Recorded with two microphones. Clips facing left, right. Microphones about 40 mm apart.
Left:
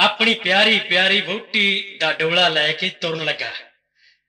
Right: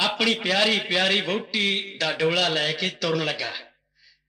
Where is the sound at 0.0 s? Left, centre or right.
Left.